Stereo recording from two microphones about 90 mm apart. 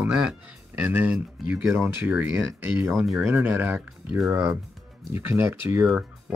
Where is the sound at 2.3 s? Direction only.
30° right (ahead or behind).